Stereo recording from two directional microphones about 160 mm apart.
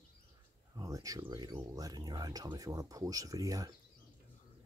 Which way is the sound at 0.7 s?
20° right (ahead or behind).